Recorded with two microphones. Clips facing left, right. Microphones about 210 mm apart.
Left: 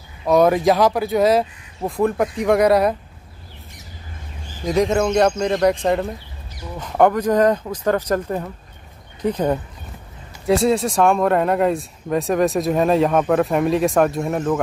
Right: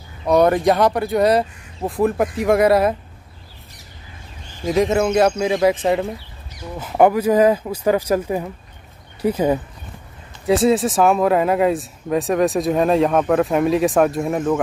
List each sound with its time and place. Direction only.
0.2 s speech: centre (ahead or behind)
4.6 s speech: centre (ahead or behind)